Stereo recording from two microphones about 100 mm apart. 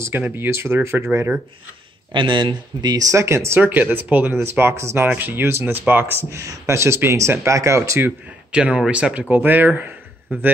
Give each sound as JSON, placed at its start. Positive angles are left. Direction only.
{"t": 0.2, "sound": "speech", "side_deg": -25}
{"t": 2.1, "sound": "speech", "side_deg": -55}
{"t": 8.5, "sound": "speech", "side_deg": -10}